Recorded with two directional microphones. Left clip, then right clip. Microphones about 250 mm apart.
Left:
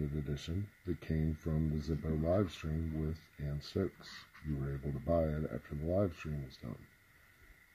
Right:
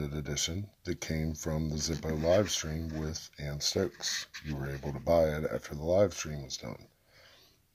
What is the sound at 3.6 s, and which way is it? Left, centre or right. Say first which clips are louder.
Speech: right 9 dB; centre.